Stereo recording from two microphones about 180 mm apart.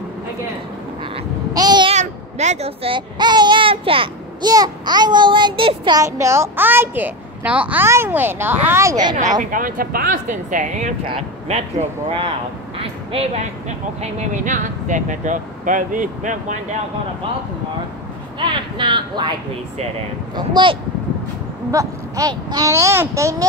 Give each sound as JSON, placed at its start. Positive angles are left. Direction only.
{"t": 1.5, "sound": "meow", "side_deg": -20}
{"t": 2.0, "sound": "a child's voice", "side_deg": -40}
{"t": 9.4, "sound": "speech", "side_deg": -50}
{"t": 12.7, "sound": "speech", "side_deg": -30}
{"t": 18.4, "sound": "speech", "side_deg": -25}
{"t": 20.3, "sound": "speech", "side_deg": -25}